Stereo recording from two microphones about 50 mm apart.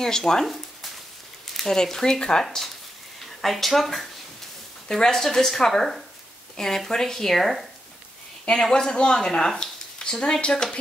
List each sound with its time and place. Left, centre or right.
0.0 s speech: centre
1.5 s a sound: centre
1.8 s speech: centre
8.5 s speech: centre